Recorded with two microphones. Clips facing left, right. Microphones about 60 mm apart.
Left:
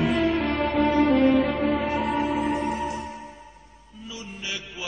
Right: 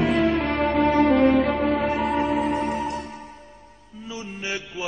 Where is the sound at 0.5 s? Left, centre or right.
Right.